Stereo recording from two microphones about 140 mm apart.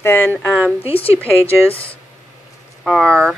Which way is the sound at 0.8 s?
45° left (ahead or behind).